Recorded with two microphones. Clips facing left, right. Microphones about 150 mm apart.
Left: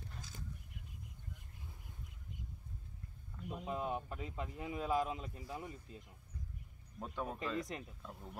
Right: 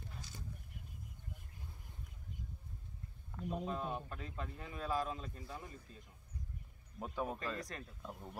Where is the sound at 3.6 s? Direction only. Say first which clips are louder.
Left 5 dB; 15° left (ahead or behind).